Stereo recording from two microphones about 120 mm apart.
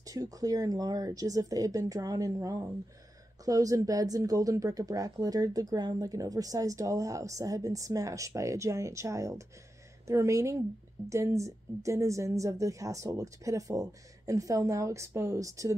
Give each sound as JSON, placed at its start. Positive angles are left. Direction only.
{"t": 0.0, "sound": "speech", "side_deg": -30}